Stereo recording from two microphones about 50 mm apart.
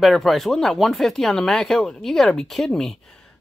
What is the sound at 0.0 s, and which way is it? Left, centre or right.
Speech, centre.